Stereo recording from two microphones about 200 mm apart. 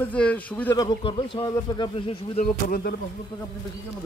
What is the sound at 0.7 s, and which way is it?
Speech, 25° left (ahead or behind).